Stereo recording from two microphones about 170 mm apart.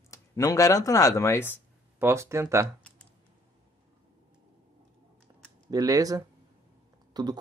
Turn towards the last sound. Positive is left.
turn(degrees=-25)  # may be behind; listen again after turning